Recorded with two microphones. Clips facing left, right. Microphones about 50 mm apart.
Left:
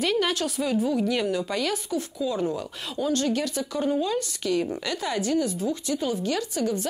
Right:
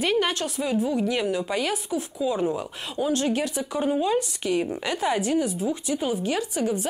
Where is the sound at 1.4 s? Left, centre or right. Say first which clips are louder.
Right 1 dB; centre.